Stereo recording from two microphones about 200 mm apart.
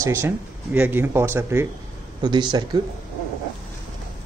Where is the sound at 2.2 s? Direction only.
25° right (ahead or behind).